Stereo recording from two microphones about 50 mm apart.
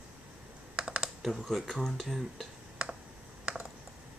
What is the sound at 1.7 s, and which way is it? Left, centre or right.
Speech, centre.